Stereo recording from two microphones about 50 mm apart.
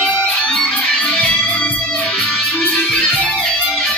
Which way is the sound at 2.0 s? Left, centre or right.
Centre.